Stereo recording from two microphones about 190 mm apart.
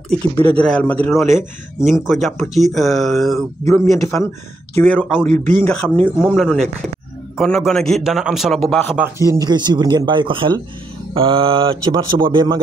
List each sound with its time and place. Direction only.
0.4 s a man's voice: 10° left (ahead or behind)
9.3 s speech: 20° right (ahead or behind)